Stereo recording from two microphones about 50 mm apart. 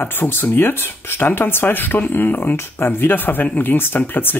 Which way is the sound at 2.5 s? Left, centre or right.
Left.